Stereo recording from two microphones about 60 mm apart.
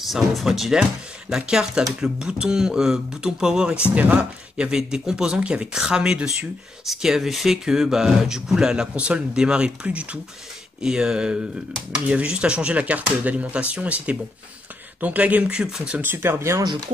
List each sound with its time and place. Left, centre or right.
0.0 s speech: centre
3.9 s speech: right
4.2 s speech: centre
16.0 s speech: right